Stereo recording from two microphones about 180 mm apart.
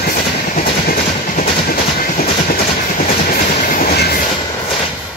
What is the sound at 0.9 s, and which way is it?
Train, 50° left (ahead or behind).